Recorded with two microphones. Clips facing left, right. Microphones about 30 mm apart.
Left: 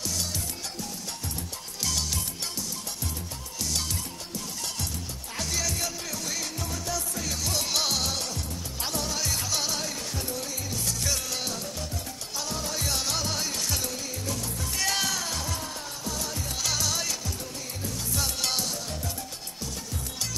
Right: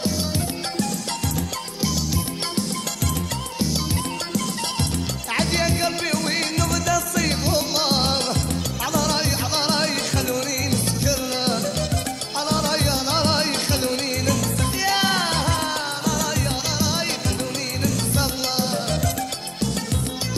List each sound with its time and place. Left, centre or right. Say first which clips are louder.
5.3 s music: right 9 dB; right
6.0 s music: right 11 dB; right
6.6 s music: right 11 dB; right
7.4 s music: right 6 dB; right
7.9 s music: right 9 dB; right
9.8 s music: right 10 dB; right
12.4 s music: right 12 dB; right
13.2 s music: right 10 dB; right
14.2 s music: right 10 dB; right
14.8 s music: right 6 dB; right
15.0 s music: right 10 dB; right
18.1 s music: right 6 dB; right